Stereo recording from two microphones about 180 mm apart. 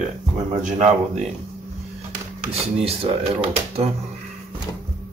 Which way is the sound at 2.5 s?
35° right (ahead or behind).